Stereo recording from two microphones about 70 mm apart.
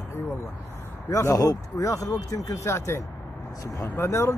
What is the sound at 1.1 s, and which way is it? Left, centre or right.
Speech, left.